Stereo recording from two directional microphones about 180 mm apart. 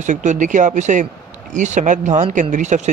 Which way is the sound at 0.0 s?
40° right (ahead or behind).